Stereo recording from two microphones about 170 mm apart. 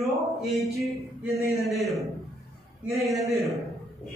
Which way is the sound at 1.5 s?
20° right (ahead or behind).